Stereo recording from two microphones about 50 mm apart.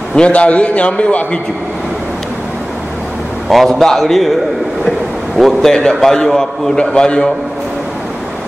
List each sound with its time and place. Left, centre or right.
0.1 s a man's voice: left
3.4 s a man's voice: centre
5.4 s a man's voice: centre